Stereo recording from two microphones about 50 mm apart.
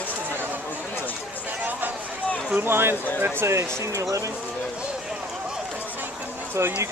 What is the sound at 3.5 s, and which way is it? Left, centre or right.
Speech, right.